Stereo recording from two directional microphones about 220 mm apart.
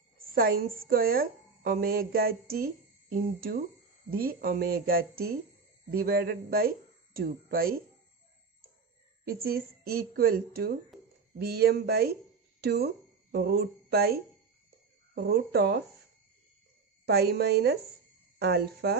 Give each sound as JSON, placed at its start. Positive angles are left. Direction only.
{"t": 0.3, "sound": "a woman's voice", "side_deg": -45}
{"t": 9.2, "sound": "a woman's voice", "side_deg": -45}
{"t": 10.9, "sound": "a sound", "side_deg": 0}
{"t": 11.3, "sound": "a woman's voice", "side_deg": -45}
{"t": 17.0, "sound": "a woman's voice", "side_deg": -45}